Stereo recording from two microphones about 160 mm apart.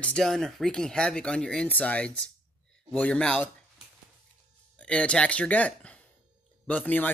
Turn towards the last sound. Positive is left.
turn(degrees=10)  # may be behind; listen again after turning